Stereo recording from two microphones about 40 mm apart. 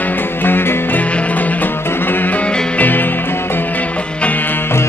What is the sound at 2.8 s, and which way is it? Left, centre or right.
Music, left.